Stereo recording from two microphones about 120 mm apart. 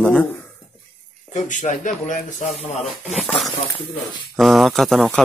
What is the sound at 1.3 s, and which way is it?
Speech, 90° left.